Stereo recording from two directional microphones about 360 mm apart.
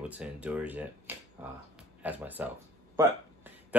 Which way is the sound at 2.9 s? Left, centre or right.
Centre.